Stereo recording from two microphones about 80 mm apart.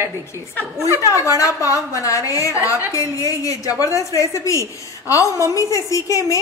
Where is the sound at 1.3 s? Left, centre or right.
Left.